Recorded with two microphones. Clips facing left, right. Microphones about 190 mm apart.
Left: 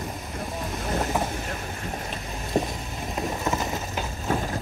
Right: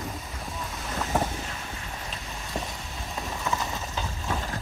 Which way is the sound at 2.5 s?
40° left (ahead or behind).